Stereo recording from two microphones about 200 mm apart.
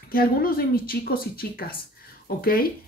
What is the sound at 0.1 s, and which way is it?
A woman's voice, 45° left (ahead or behind).